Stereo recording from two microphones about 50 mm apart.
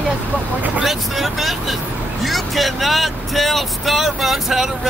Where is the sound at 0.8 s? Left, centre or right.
Centre.